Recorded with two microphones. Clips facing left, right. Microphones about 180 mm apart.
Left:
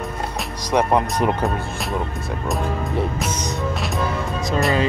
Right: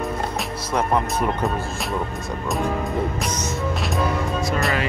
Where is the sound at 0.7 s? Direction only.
20° left (ahead or behind).